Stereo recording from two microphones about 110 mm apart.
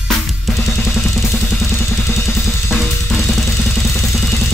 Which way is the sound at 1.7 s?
15° left (ahead or behind).